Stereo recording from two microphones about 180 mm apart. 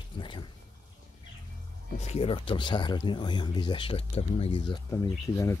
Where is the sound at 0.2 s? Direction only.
25° left (ahead or behind).